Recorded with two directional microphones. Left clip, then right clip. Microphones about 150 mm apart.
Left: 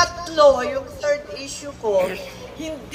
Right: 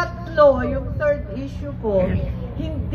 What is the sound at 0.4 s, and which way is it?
Speech, 20° left (ahead or behind).